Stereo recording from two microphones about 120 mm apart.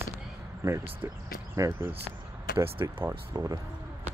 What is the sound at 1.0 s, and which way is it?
Speech, 20° right (ahead or behind).